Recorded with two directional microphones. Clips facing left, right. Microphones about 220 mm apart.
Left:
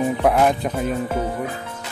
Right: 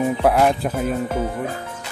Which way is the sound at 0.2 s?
Centre (ahead or behind).